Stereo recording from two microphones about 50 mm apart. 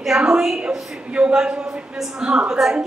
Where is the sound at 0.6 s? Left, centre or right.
Right.